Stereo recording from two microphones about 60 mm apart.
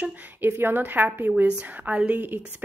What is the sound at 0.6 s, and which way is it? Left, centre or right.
A woman's voice, right.